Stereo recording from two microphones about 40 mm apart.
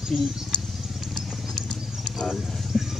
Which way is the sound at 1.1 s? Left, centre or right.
Centre.